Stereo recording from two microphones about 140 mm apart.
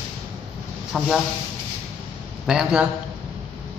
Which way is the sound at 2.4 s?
5° right (ahead or behind).